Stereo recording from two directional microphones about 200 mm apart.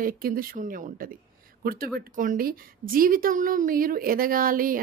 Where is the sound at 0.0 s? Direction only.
45° right (ahead or behind).